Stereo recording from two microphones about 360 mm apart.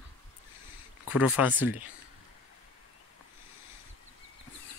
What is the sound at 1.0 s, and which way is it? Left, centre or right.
Speech, centre.